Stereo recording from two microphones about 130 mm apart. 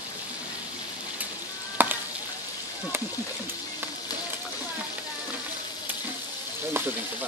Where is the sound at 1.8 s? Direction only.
15° right (ahead or behind).